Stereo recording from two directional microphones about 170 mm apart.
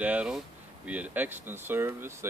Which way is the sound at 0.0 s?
10° right (ahead or behind).